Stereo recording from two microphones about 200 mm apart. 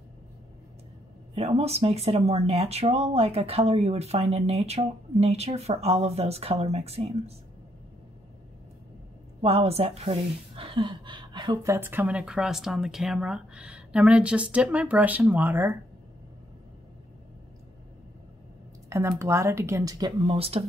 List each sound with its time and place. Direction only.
1.3 s speech: 30° right (ahead or behind)
9.4 s a woman's voice: 30° right (ahead or behind); by 15.7 s 10° right (ahead or behind)
18.9 s a woman's voice: 15° right (ahead or behind)